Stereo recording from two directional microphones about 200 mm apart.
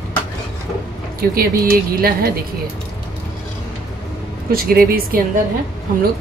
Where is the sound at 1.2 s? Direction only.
45° right (ahead or behind).